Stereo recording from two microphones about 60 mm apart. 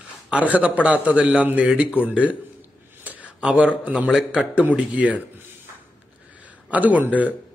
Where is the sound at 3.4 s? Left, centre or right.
Centre.